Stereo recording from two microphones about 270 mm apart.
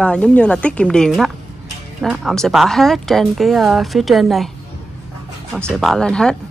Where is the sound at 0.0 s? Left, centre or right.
Centre.